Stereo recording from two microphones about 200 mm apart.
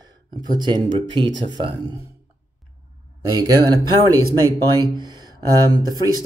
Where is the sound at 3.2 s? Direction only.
20° right (ahead or behind).